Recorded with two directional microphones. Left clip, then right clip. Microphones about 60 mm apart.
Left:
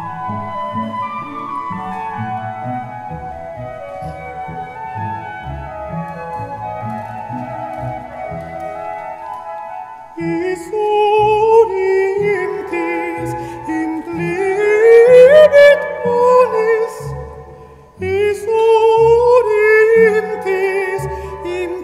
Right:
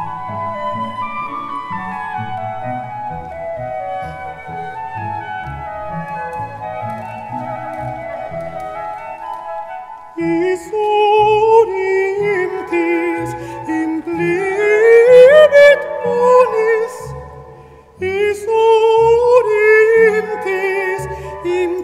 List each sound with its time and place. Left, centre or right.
10.1 s music: centre
18.0 s music: centre